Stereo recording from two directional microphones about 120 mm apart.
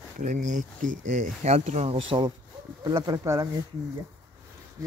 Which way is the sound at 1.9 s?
45° right (ahead or behind).